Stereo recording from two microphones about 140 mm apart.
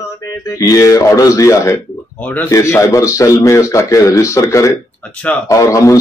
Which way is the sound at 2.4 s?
20° left (ahead or behind).